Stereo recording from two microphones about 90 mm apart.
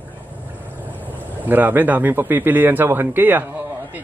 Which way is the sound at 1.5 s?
20° right (ahead or behind).